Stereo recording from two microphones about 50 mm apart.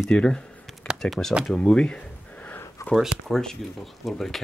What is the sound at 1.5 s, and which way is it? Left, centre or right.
Speech, centre.